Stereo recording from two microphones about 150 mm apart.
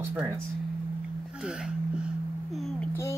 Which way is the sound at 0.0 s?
10° right (ahead or behind).